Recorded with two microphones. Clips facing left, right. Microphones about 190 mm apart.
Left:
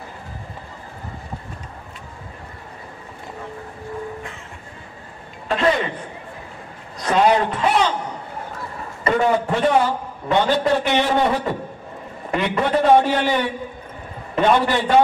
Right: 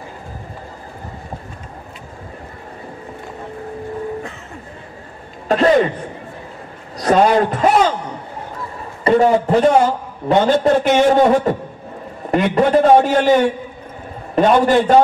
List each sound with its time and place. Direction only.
5.5 s a man's voice: 40° right (ahead or behind)
7.0 s a man's voice: 45° right (ahead or behind)
9.0 s a man's voice: 35° right (ahead or behind)